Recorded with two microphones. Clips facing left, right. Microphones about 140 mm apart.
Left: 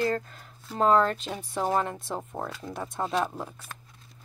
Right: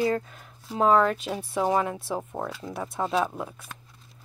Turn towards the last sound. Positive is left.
turn(degrees=0)  # may be behind; listen again after turning